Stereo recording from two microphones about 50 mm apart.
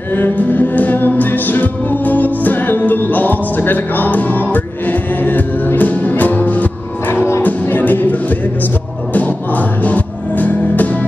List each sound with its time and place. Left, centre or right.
0.1 s music: left